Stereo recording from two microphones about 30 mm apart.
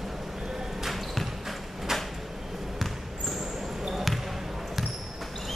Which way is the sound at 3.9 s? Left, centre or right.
Centre.